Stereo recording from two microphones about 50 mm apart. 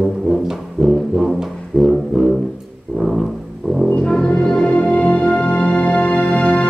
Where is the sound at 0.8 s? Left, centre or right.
Centre.